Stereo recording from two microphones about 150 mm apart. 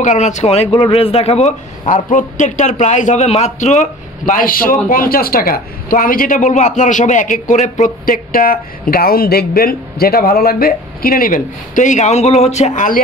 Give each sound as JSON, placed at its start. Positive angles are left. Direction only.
{"t": 0.0, "sound": "a man's voice", "side_deg": 50}
{"t": 0.7, "sound": "a man's voice", "side_deg": 30}